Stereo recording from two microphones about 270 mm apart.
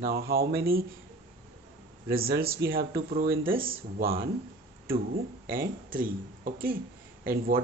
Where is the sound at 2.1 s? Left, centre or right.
Right.